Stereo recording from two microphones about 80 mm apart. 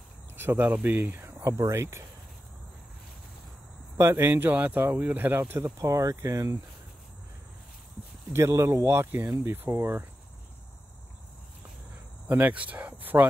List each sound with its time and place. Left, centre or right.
0.4 s speech: right
1.2 s a sound: right
1.7 s speech: right
4.0 s speech: right
5.8 s speech: right
8.3 s speech: right
12.3 s speech: right